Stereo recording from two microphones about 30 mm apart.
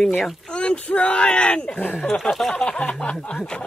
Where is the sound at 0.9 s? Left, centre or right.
Left.